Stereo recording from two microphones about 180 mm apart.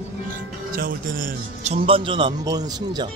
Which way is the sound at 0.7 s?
50° right (ahead or behind).